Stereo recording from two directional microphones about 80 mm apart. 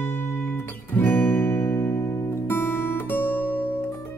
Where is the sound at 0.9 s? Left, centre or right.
Left.